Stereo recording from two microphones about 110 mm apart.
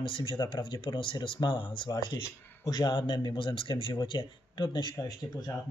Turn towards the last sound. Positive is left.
turn(degrees=35)  # may be behind; listen again after turning